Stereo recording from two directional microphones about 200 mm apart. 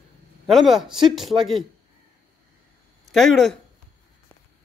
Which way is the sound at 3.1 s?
Centre (ahead or behind).